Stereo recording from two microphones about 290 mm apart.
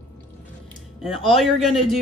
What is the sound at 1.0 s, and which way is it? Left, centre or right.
Music, centre.